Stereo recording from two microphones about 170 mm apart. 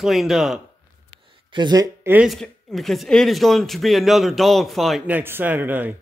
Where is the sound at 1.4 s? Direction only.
25° right (ahead or behind).